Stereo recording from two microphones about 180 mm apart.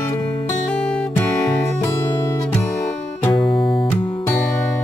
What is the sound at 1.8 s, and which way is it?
Music, 20° left (ahead or behind).